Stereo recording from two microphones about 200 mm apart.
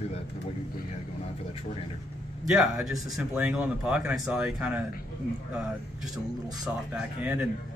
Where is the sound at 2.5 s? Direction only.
5° right (ahead or behind).